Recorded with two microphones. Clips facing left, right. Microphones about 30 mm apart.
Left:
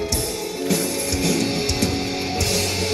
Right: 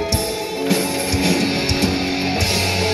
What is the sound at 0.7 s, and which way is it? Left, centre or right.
Music, right.